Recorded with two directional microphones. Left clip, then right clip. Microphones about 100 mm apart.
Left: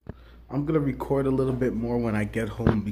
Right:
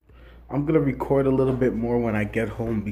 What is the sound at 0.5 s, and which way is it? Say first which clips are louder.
Speech: right 4 dB; 15° left (ahead or behind).